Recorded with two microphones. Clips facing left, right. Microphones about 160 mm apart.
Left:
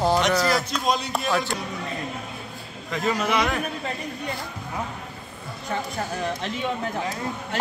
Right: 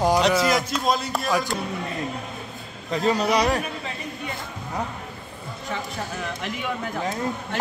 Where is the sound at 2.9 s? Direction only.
30° right (ahead or behind).